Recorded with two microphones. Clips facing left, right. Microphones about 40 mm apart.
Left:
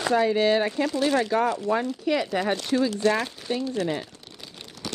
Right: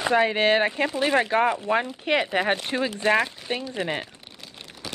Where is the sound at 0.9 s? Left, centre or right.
Right.